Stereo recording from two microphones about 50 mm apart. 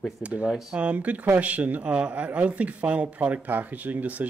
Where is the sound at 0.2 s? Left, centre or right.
Right.